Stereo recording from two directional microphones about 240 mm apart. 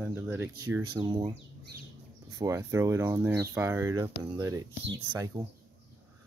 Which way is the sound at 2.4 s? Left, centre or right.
Centre.